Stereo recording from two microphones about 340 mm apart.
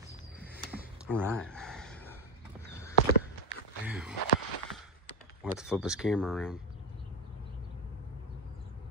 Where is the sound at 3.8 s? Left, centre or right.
Centre.